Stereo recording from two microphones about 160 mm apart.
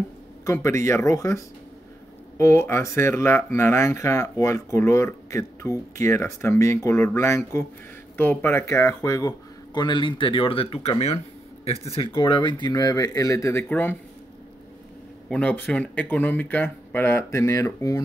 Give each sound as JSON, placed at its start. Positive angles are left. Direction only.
{"t": 0.5, "sound": "speech", "side_deg": 20}
{"t": 9.8, "sound": "speech", "side_deg": 30}
{"t": 15.2, "sound": "speech", "side_deg": 5}